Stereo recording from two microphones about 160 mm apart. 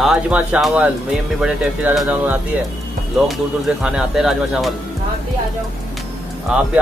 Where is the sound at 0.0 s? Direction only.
5° right (ahead or behind).